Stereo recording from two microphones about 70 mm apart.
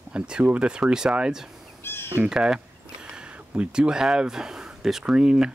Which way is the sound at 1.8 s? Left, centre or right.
Left.